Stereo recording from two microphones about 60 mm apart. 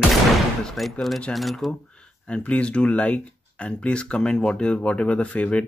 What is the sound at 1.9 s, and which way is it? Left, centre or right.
Speech, centre.